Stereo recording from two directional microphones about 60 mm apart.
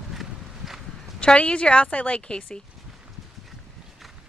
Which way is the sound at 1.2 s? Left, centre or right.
Centre.